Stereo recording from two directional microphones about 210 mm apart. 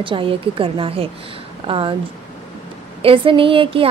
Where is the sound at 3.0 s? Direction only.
25° right (ahead or behind).